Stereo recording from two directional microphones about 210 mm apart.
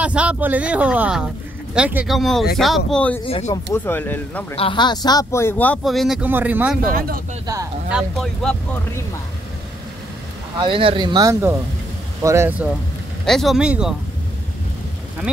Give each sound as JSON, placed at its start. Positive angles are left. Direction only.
{"t": 0.0, "sound": "a man's voice", "side_deg": -5}
{"t": 3.3, "sound": "speech", "side_deg": 25}
{"t": 3.7, "sound": "speech", "side_deg": 10}
{"t": 4.6, "sound": "speech", "side_deg": 25}
{"t": 6.8, "sound": "speech", "side_deg": -45}
{"t": 7.9, "sound": "a man's voice", "side_deg": 0}
{"t": 10.6, "sound": "speech", "side_deg": -25}
{"t": 13.2, "sound": "a man's voice", "side_deg": 0}